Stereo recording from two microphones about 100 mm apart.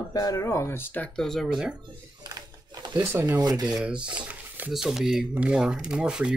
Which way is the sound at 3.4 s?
40° right (ahead or behind).